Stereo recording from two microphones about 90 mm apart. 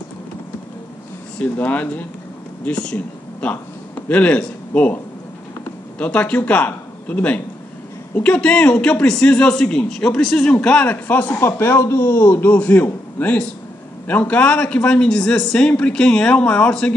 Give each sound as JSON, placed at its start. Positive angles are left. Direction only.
{"t": 1.4, "sound": "speech", "side_deg": 15}
{"t": 5.9, "sound": "speech", "side_deg": 15}